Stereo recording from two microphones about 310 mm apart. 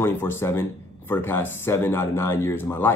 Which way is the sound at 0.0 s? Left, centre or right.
Centre.